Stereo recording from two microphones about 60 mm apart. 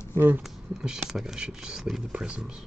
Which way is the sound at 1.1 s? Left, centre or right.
Centre.